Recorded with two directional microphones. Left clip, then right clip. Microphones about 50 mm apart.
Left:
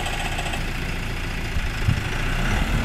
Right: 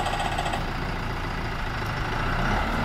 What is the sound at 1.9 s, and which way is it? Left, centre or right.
Vehicle, left.